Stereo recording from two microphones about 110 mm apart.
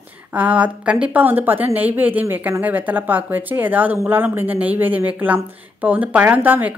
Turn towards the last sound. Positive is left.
turn(degrees=-15)  # may be behind; listen again after turning